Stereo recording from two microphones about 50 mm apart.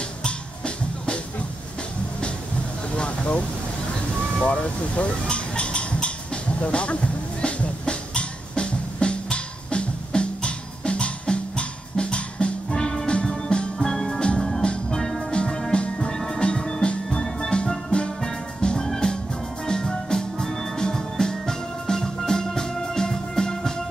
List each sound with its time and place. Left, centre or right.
0.2 s music: left
3.0 s vehicle: left
4.4 s a sound: left
7.4 s music: left